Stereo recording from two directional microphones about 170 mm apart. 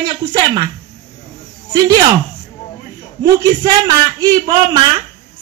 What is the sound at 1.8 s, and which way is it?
Speech, 25° right (ahead or behind).